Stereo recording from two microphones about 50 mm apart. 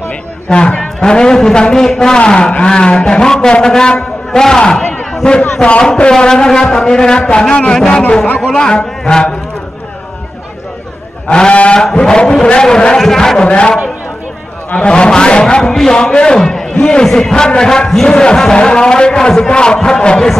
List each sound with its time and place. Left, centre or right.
0.5 s a man's voice: left
11.2 s a man's voice: left